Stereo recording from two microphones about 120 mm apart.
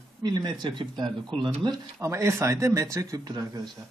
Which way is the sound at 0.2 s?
35° right (ahead or behind).